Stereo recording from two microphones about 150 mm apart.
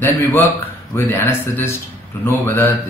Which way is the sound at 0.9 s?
15° left (ahead or behind).